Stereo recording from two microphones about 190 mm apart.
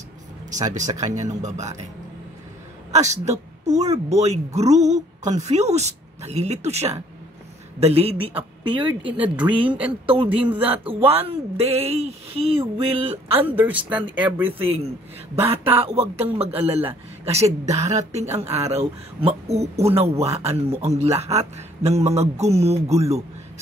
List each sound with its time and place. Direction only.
1.0 s speech: 40° right (ahead or behind)
2.9 s a woman's voice: 35° right (ahead or behind)
9.7 s speech: 5° right (ahead or behind)
10.0 s speech: 30° right (ahead or behind)
10.6 s speech: 10° right (ahead or behind)
10.9 s speech: 30° right (ahead or behind)
13.5 s speech: 10° right (ahead or behind)
15.4 s speech: 30° right (ahead or behind)